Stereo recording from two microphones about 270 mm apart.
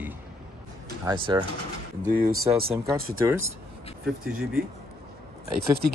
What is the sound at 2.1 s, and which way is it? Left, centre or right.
Speech, right.